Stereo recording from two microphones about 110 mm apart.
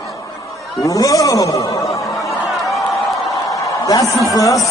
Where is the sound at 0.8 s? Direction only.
30° left (ahead or behind).